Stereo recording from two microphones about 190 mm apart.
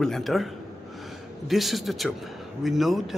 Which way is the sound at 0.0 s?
Centre (ahead or behind).